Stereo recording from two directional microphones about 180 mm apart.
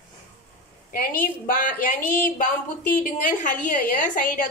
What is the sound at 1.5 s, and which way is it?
A woman's voice, 50° left (ahead or behind).